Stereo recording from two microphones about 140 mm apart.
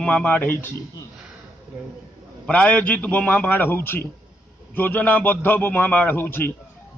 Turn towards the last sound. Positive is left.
turn(degrees=15)  # may be behind; listen again after turning